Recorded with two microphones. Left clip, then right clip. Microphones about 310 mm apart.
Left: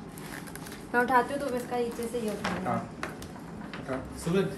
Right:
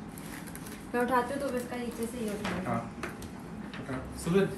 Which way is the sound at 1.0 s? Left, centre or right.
Centre.